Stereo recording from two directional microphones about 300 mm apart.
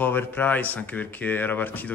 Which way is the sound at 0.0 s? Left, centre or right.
Centre.